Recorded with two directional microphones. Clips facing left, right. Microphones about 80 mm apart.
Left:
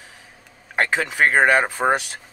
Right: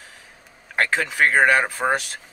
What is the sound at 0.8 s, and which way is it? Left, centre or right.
Speech, centre.